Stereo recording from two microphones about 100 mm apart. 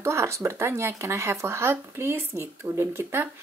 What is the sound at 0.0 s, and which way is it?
Speech, 25° right (ahead or behind).